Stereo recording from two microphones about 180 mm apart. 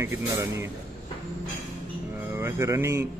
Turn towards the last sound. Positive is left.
turn(degrees=-15)  # may be behind; listen again after turning